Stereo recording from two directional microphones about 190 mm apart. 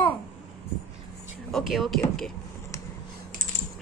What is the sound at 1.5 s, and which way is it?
Speech, centre (ahead or behind).